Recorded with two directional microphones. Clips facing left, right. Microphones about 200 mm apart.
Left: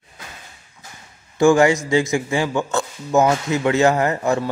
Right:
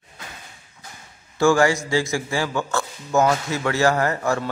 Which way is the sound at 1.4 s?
20° left (ahead or behind).